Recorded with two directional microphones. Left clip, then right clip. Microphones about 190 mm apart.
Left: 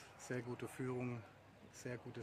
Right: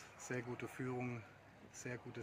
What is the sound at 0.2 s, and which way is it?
Speech, 20° left (ahead or behind).